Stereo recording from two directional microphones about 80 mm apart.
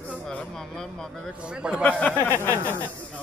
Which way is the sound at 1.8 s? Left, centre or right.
Centre.